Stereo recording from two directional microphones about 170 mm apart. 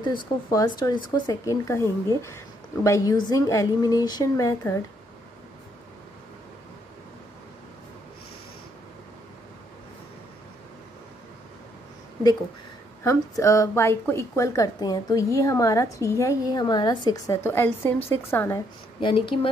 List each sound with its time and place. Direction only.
0.1 s speech: 25° left (ahead or behind)
13.0 s a woman's voice: 15° left (ahead or behind)
18.9 s speech: 30° left (ahead or behind)